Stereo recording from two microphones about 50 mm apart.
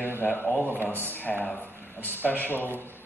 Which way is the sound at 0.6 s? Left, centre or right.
Right.